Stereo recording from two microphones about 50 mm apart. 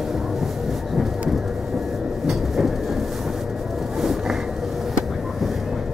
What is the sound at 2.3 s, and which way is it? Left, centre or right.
Train, centre.